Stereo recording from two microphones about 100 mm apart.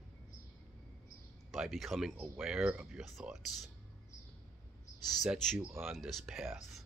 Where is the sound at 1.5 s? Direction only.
Centre (ahead or behind).